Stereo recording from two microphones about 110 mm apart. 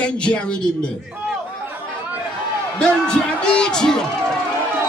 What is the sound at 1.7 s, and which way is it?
Chatter, 15° right (ahead or behind).